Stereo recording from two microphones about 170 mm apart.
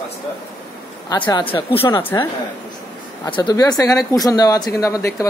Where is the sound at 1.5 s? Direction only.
25° left (ahead or behind).